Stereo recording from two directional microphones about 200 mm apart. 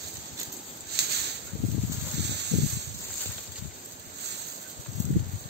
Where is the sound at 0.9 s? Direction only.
55° right (ahead or behind).